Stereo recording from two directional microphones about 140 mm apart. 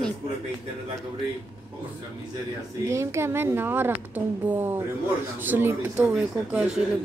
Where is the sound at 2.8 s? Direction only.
20° right (ahead or behind).